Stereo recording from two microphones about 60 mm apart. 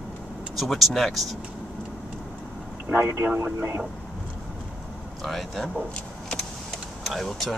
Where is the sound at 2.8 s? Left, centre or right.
Right.